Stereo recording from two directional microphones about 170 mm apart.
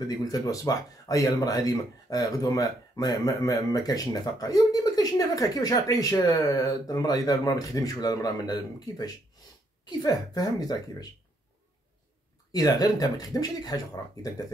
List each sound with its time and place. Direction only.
0.0 s speech: 20° left (ahead or behind)
12.5 s speech: 20° left (ahead or behind)